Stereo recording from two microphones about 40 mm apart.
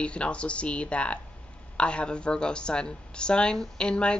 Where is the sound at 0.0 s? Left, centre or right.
Left.